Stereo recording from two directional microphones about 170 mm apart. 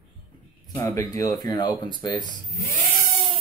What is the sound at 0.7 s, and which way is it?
Speech, 15° left (ahead or behind).